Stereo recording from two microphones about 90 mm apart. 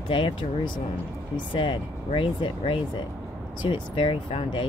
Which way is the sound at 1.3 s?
70° left (ahead or behind).